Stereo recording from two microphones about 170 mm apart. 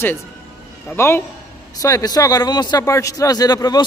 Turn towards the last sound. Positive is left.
turn(degrees=25)  # may be behind; listen again after turning